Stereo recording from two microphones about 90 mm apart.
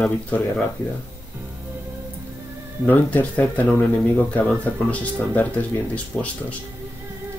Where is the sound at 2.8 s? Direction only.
20° left (ahead or behind).